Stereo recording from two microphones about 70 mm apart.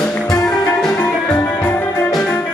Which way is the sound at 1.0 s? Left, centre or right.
Left.